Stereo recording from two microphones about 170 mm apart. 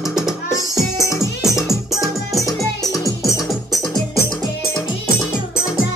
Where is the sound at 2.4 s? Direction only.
20° left (ahead or behind).